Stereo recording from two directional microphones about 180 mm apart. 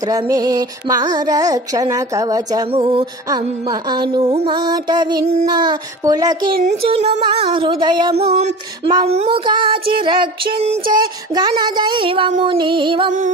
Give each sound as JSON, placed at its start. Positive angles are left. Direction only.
{"t": 0.0, "sound": "music", "side_deg": -20}
{"t": 2.7, "sound": "music", "side_deg": -30}
{"t": 5.2, "sound": "a sound", "side_deg": -35}
{"t": 5.5, "sound": "music", "side_deg": -25}
{"t": 6.5, "sound": "a sound", "side_deg": -40}
{"t": 9.0, "sound": "music", "side_deg": -35}